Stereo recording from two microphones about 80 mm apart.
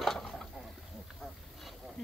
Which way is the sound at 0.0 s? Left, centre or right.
Centre.